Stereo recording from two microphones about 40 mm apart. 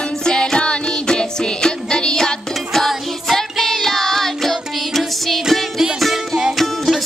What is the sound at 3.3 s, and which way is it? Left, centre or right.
Child singing, centre.